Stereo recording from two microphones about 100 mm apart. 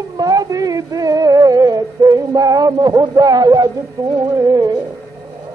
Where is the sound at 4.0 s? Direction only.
40° right (ahead or behind).